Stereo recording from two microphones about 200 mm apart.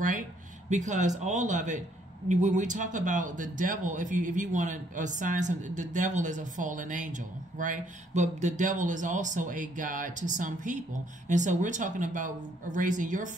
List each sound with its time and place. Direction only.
0.7 s speech: 35° right (ahead or behind)